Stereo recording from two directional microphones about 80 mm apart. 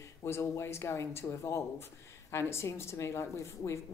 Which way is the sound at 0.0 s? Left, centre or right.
Left.